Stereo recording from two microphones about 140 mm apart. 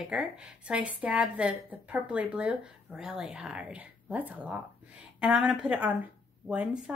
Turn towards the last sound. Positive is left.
turn(degrees=-10)  # may be behind; listen again after turning